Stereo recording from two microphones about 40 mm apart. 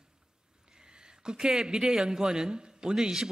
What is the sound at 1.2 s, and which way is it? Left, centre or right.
A man's voice, centre.